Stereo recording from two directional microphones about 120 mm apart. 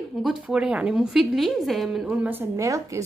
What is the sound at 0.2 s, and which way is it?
A woman's voice, 5° right (ahead or behind).